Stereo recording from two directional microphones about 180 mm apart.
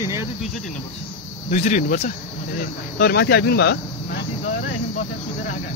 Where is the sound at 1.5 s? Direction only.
45° left (ahead or behind).